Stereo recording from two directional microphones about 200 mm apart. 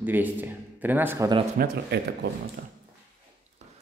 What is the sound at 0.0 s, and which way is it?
A man's voice, 10° right (ahead or behind).